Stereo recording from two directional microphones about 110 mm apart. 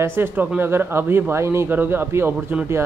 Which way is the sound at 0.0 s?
20° right (ahead or behind).